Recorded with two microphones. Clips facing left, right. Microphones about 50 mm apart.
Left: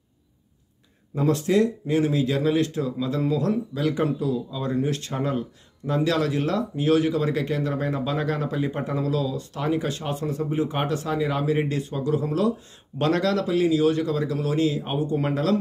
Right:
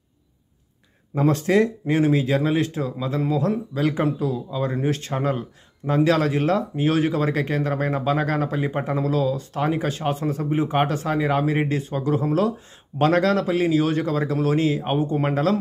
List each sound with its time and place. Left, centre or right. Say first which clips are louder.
1.1 s speech: right 2 dB; right; by 3.5 s centre
3.7 s speech: right 2 dB; right
5.8 s speech: right 2 dB; centre
6.1 s speech: right 3 dB; right